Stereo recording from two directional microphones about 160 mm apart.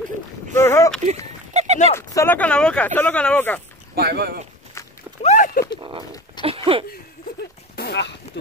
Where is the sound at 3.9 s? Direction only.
80° right.